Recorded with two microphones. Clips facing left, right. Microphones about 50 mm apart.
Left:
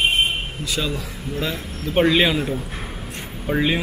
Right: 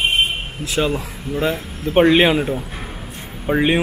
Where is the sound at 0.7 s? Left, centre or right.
Right.